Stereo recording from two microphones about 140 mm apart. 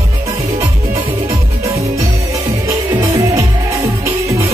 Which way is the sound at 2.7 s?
20° right (ahead or behind).